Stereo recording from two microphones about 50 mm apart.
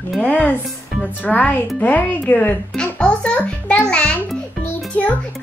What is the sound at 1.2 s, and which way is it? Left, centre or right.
A child's voice, left.